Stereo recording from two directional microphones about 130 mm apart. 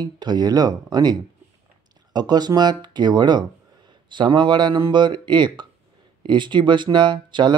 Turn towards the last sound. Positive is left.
turn(degrees=-35)  # may be behind; listen again after turning